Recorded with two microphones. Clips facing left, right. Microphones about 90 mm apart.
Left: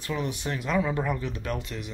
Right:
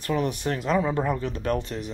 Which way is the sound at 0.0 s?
50° right (ahead or behind).